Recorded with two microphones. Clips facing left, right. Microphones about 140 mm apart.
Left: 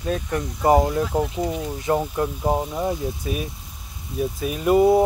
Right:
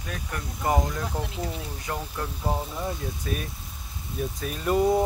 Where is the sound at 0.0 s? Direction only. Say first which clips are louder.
Left 10 dB; 30° left (ahead or behind).